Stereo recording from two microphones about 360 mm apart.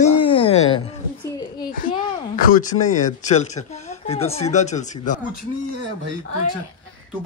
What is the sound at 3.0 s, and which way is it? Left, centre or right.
Speech, centre.